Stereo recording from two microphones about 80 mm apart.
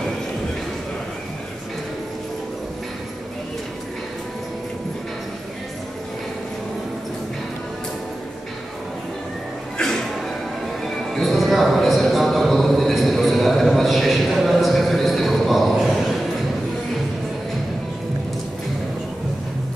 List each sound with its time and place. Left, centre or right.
9.8 s music: centre
11.1 s music: centre